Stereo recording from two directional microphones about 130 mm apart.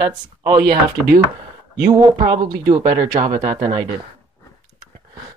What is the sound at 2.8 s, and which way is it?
Speech, 80° right.